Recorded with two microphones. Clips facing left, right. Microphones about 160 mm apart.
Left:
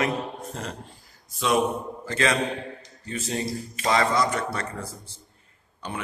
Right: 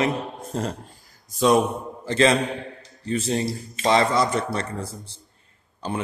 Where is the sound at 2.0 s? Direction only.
30° right (ahead or behind).